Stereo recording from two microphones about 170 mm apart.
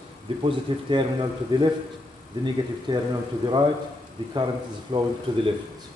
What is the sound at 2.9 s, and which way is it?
Speech, 30° right (ahead or behind).